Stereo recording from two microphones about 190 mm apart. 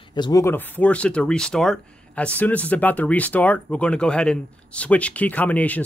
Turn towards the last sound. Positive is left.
turn(degrees=10)  # may be behind; listen again after turning